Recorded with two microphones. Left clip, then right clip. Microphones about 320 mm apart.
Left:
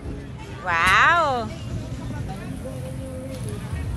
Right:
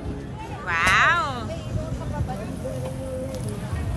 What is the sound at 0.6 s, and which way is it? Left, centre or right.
Speech, centre.